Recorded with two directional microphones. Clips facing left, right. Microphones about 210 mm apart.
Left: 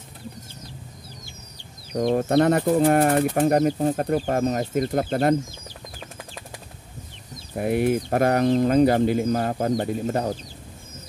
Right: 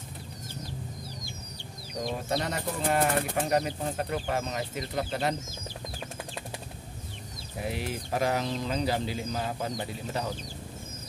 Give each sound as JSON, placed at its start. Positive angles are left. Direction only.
{"t": 2.0, "sound": "speech", "side_deg": 55}
{"t": 7.5, "sound": "speech", "side_deg": 55}